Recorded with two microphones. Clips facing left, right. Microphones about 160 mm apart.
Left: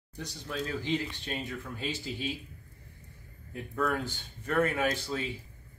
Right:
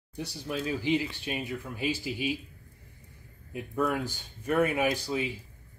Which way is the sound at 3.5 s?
15° right (ahead or behind).